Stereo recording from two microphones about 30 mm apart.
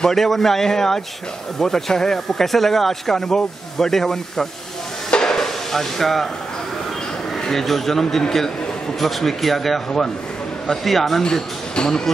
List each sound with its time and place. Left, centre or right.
0.1 s speech: centre
5.2 s a sound: centre
7.4 s speech: centre
11.7 s speech: left